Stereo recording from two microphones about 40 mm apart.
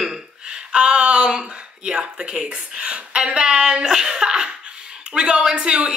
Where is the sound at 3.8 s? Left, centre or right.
Centre.